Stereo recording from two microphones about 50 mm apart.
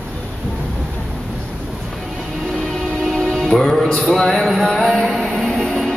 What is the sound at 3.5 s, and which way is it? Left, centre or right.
Music, centre.